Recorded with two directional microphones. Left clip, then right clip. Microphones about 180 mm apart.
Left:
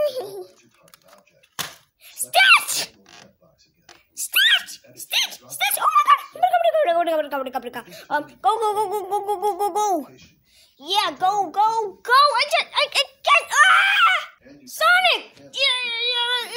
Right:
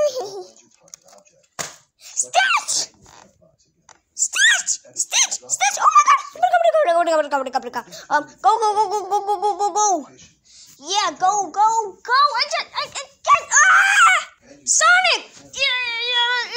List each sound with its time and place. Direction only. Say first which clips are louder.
0.0 s babbling: right 3 dB; 10° right (ahead or behind)
2.6 s sneeze: right 2 dB; 45° left (ahead or behind)
4.3 s dog: right 1 dB; 5° right (ahead or behind)
5.7 s a sound: right 3 dB; 5° left (ahead or behind)
9.8 s a child's voice: right 3 dB; 10° left (ahead or behind)
12.0 s speech: left 2 dB; 30° left (ahead or behind)
13.8 s screaming: right 3 dB; 10° right (ahead or behind)
14.9 s a child's voice: right 1 dB; centre (ahead or behind)
15.9 s child singing: right 2 dB; centre (ahead or behind)